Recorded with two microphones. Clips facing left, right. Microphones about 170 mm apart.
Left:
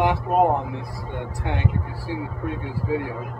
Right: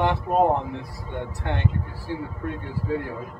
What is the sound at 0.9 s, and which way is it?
Speech, 90° left.